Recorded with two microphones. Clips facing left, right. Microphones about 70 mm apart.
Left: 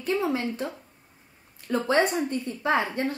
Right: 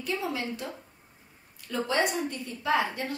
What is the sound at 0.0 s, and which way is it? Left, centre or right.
Speech, left.